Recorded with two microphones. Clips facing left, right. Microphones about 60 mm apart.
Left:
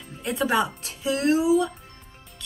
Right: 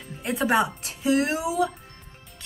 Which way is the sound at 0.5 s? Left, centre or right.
Right.